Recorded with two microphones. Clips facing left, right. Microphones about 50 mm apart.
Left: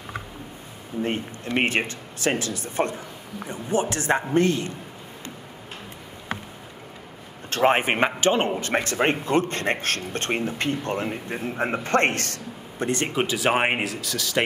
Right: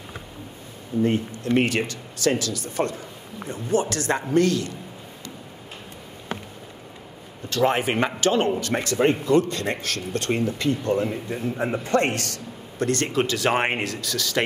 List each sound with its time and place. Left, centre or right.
1.0 s speech: left
7.4 s a man's voice: left
12.7 s speech: centre